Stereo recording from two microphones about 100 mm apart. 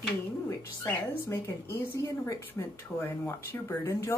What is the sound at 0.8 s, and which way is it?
A woman's voice, 25° left (ahead or behind).